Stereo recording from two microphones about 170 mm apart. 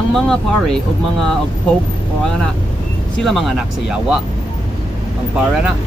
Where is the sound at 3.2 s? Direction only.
Centre (ahead or behind).